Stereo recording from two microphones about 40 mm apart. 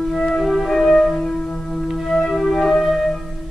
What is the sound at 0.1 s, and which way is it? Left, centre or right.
Music, centre.